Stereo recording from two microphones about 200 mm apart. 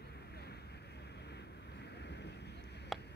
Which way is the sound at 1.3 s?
55° left (ahead or behind).